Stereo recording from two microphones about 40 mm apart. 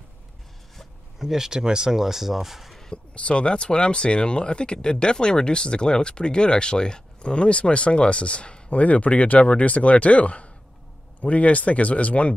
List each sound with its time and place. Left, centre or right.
1.2 s speech: centre
2.9 s speech: left